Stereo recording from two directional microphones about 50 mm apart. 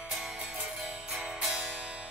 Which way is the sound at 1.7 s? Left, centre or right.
Right.